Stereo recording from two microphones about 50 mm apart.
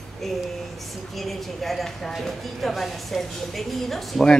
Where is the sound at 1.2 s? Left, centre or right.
Centre.